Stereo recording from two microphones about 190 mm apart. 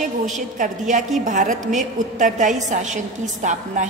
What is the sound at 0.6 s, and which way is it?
A woman's voice, 40° right (ahead or behind).